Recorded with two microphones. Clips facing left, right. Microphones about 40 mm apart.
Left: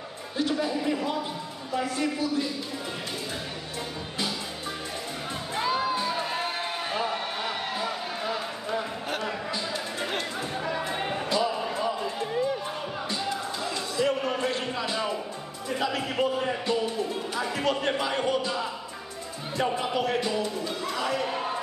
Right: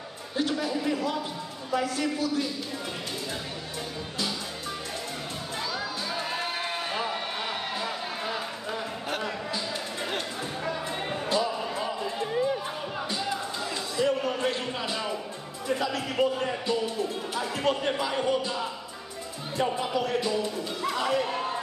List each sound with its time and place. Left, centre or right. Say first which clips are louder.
0.5 s speech: left 2 dB; centre
5.5 s music: left 8 dB; left
6.0 s crowd: left 2 dB; centre
10.9 s music: left 2 dB; centre
11.6 s a sound: left 2 dB; centre
13.1 s music: left 1 dB; centre
14.0 s a sound: right 1 dB; centre
14.7 s a sound: left 2 dB; centre
15.9 s music: even; centre
17.4 s music: left 1 dB; left
17.9 s music: even; centre